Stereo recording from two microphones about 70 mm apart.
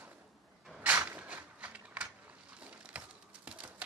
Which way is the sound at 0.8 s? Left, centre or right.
Right.